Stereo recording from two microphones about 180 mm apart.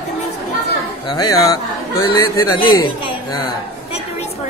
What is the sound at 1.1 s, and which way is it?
A man's voice, 20° left (ahead or behind).